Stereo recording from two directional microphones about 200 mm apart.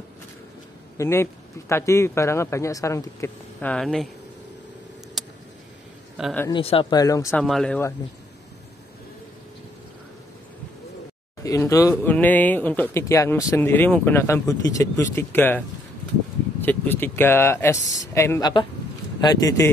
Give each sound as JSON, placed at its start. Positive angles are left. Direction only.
{"t": 0.9, "sound": "a man's voice", "side_deg": 10}
{"t": 5.2, "sound": "a sound", "side_deg": 0}
{"t": 6.5, "sound": "speech", "side_deg": 25}
{"t": 7.2, "sound": "speech", "side_deg": 0}
{"t": 11.4, "sound": "a man's voice", "side_deg": 15}
{"t": 16.6, "sound": "a man's voice", "side_deg": 10}